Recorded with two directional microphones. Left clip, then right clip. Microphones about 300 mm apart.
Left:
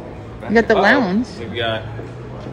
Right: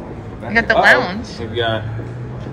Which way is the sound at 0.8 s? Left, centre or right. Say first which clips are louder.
Right 3 dB; left.